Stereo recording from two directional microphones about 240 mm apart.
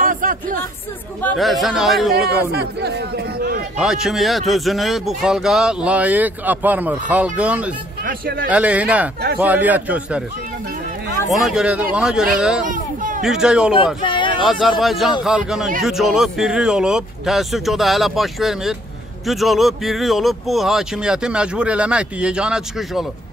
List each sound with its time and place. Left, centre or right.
0.0 s music: right
1.2 s speech: centre
2.5 s speech: right
3.8 s speech: centre
8.0 s a man's voice: right
8.5 s a man's voice: centre
11.2 s speech: centre
12.6 s children playing: right
13.2 s speech: centre
14.0 s speech: left
14.4 s speech: centre